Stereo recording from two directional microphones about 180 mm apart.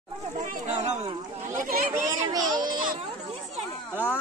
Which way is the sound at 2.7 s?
50° right (ahead or behind).